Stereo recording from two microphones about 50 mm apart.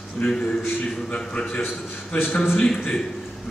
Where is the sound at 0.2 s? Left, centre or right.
Left.